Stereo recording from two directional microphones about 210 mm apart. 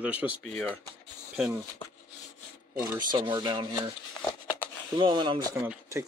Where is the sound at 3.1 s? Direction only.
20° right (ahead or behind).